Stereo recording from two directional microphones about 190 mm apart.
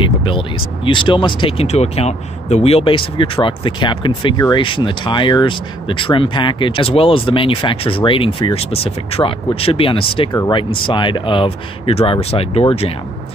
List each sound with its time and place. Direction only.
0.0 s speech: 25° left (ahead or behind)